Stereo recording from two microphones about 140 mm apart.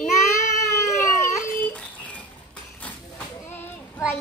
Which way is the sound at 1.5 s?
10° left (ahead or behind).